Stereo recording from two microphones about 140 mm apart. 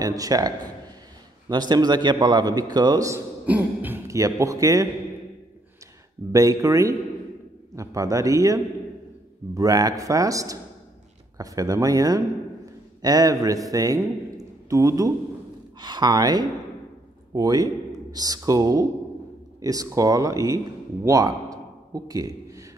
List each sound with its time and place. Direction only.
0.0 s a man's voice: 25° right (ahead or behind)
1.5 s a man's voice: 30° right (ahead or behind)
3.4 s speech: 15° right (ahead or behind)
6.3 s a man's voice: 25° right (ahead or behind)